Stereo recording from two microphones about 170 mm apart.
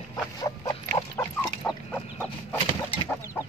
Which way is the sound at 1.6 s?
5° left (ahead or behind).